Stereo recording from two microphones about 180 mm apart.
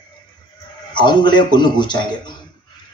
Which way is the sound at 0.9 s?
25° left (ahead or behind).